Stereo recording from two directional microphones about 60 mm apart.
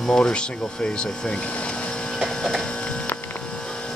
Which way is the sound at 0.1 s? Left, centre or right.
Centre.